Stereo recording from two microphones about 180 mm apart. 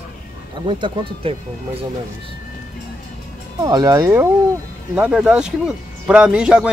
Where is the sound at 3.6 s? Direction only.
20° right (ahead or behind).